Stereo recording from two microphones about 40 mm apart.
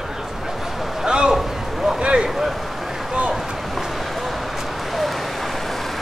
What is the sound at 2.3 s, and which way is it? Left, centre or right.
Vehicle, centre.